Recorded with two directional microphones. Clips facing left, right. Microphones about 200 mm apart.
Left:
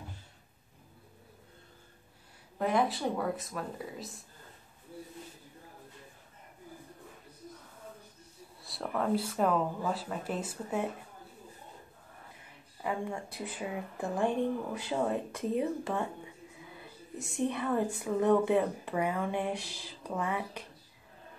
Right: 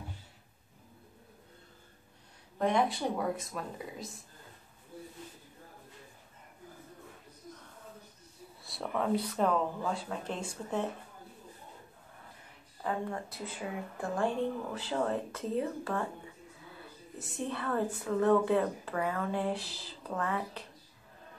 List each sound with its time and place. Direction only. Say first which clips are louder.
2.6 s speech: even; centre (ahead or behind)
8.6 s speech: even; centre (ahead or behind)
12.8 s a woman's voice: even; 10° left (ahead or behind)
17.5 s a woman's voice: even; 15° left (ahead or behind)